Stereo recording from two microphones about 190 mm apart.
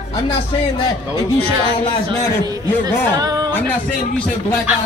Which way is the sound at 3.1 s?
20° right (ahead or behind).